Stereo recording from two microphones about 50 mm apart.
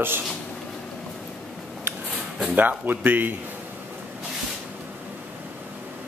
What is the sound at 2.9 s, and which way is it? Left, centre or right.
Speech, right.